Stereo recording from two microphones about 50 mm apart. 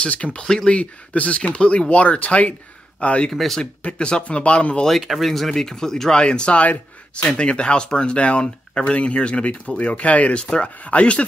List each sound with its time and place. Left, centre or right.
0.0 s speech: left
3.3 s speech: centre
3.8 s speech: left
4.8 s speech: centre; by 10.4 s left
10.4 s speech: centre
10.8 s speech: left